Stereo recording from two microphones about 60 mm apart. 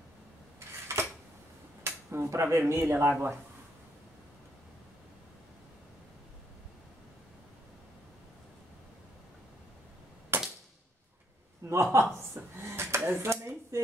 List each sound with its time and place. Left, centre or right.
0.6 s dishes: right
1.8 s a sound: right
2.7 s a man's voice: right
10.3 s cap gun: right
11.6 s speech: right